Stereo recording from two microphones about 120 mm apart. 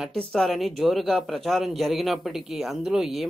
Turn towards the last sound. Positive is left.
turn(degrees=0)  # may be behind; listen again after turning